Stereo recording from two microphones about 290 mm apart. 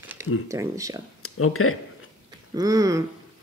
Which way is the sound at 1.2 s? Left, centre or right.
Left.